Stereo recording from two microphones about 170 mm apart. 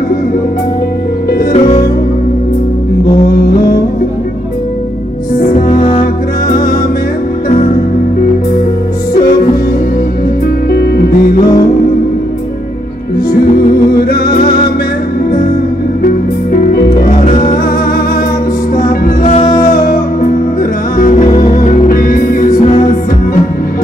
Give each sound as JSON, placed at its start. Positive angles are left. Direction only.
{"t": 5.4, "sound": "music", "side_deg": 45}
{"t": 10.7, "sound": "music", "side_deg": 65}
{"t": 13.9, "sound": "music", "side_deg": 65}
{"t": 16.5, "sound": "music", "side_deg": 60}
{"t": 17.2, "sound": "music", "side_deg": 40}
{"t": 19.2, "sound": "music", "side_deg": 35}
{"t": 19.7, "sound": "music", "side_deg": 55}
{"t": 22.6, "sound": "music", "side_deg": 35}